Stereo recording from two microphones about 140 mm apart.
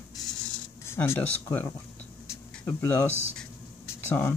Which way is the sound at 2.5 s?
10° left (ahead or behind).